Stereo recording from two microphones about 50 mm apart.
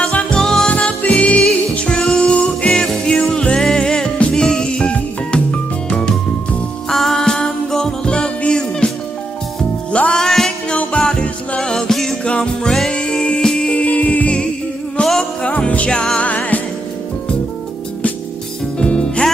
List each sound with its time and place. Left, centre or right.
0.0 s music: left
0.4 s music: centre
0.7 s music: left
1.8 s music: centre
10.1 s music: centre
10.7 s music: left
11.0 s music: centre
13.7 s music: left
16.3 s music: left
18.8 s music: centre